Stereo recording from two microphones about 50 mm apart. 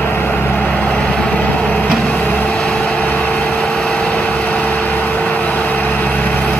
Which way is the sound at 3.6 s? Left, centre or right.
Centre.